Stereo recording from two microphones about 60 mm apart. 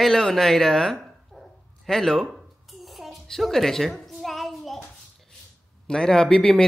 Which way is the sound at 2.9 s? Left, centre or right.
Centre.